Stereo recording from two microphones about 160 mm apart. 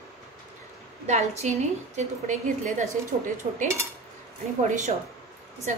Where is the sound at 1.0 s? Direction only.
45° right (ahead or behind).